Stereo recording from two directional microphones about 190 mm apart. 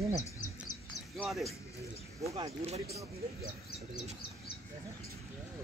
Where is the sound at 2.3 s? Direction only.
15° right (ahead or behind).